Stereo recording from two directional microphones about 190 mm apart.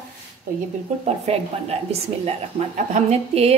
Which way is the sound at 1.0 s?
35° right (ahead or behind).